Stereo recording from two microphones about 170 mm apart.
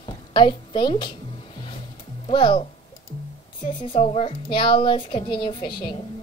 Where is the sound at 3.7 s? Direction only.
30° left (ahead or behind).